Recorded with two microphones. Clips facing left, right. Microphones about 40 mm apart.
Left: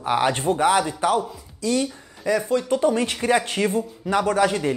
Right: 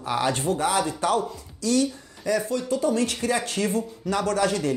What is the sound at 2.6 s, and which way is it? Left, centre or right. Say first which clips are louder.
Speech: left 3 dB; left.